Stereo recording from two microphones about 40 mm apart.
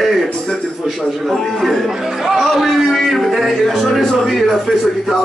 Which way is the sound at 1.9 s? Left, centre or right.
Centre.